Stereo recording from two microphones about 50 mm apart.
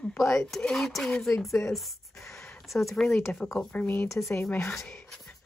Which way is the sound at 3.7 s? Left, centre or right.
Left.